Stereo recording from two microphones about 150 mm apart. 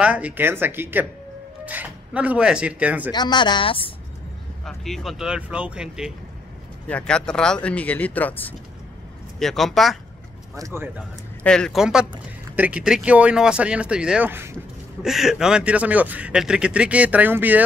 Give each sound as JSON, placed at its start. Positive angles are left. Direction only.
{"t": 0.0, "sound": "speech", "side_deg": -10}
{"t": 3.1, "sound": "speech", "side_deg": 30}
{"t": 4.6, "sound": "speech", "side_deg": 0}
{"t": 6.9, "sound": "speech", "side_deg": 5}
{"t": 10.5, "sound": "speech", "side_deg": -20}
{"t": 11.4, "sound": "speech", "side_deg": 5}
{"t": 15.0, "sound": "speech", "side_deg": 0}